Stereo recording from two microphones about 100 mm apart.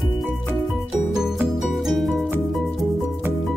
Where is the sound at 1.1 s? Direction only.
5° right (ahead or behind).